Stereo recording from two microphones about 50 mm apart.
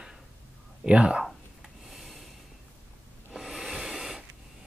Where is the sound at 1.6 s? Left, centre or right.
Centre.